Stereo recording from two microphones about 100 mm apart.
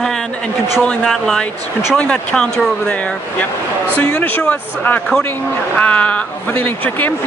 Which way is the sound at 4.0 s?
15° left (ahead or behind).